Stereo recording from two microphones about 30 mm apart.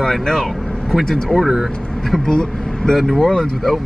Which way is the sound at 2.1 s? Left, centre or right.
Left.